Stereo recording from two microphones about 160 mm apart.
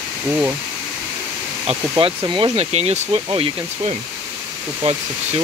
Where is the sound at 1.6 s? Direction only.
30° right (ahead or behind).